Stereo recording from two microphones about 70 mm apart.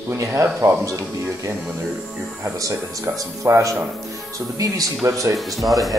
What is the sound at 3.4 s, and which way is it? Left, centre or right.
Speech, right.